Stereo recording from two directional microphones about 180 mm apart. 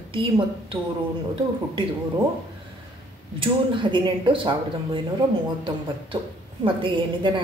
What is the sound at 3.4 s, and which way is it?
A woman's voice, 25° right (ahead or behind).